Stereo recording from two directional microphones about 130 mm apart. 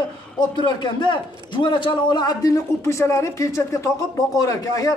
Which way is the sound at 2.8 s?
20° left (ahead or behind).